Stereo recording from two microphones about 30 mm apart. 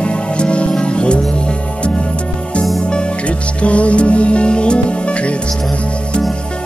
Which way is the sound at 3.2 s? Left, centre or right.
Left.